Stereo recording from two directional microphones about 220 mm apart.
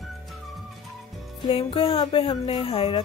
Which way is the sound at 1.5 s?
25° left (ahead or behind).